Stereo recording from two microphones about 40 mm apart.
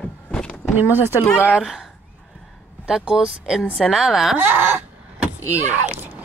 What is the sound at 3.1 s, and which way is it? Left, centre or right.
Speech, right.